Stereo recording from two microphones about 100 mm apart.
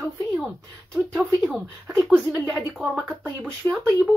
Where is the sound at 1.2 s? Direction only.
10° left (ahead or behind).